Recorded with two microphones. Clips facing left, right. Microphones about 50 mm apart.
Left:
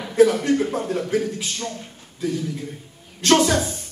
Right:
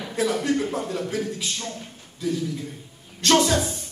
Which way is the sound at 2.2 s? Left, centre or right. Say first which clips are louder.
Left 1 dB; left.